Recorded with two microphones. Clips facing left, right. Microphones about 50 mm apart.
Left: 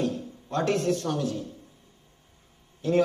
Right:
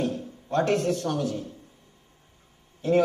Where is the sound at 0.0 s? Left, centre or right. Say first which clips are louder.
Even; right.